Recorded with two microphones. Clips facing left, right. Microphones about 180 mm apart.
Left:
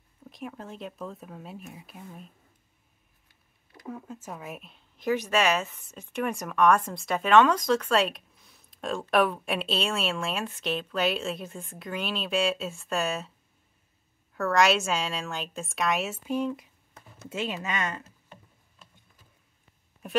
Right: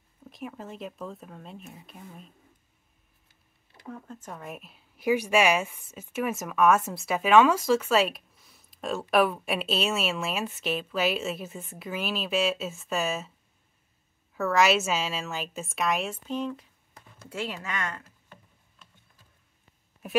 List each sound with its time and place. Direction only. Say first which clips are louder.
0.2 s a woman's voice: even; centre (ahead or behind)
3.8 s a woman's voice: left 2 dB; 5° left (ahead or behind)
14.3 s a woman's voice: even; centre (ahead or behind); by 18.4 s 20° left (ahead or behind)
20.0 s a woman's voice: right 1 dB; 5° right (ahead or behind)